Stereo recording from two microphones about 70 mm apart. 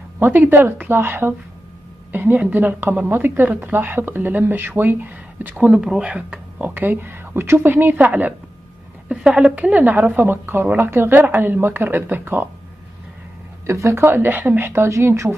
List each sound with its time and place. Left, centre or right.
0.2 s a woman's voice: right
9.1 s speech: centre; by 12.4 s right
13.7 s speech: right
14.0 s speech: right